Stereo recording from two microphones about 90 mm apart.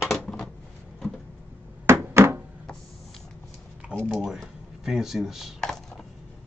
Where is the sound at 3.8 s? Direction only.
10° right (ahead or behind).